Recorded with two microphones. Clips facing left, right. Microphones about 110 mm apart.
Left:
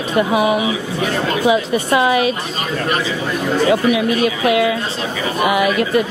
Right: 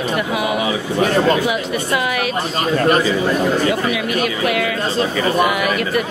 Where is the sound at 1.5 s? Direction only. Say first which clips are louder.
Left 5 dB; 25° left (ahead or behind).